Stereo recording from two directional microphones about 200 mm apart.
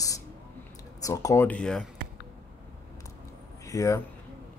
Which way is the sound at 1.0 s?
15° left (ahead or behind).